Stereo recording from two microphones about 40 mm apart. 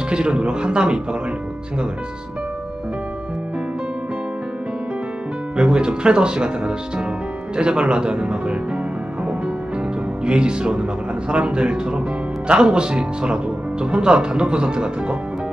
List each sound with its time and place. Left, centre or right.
0.1 s speech: right
5.6 s speech: right
10.2 s speech: right